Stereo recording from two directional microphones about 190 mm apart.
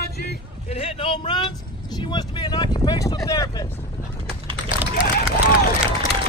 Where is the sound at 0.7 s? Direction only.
30° left (ahead or behind).